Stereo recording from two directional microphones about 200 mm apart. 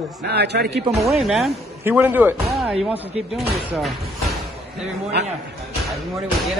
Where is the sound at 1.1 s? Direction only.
Centre (ahead or behind).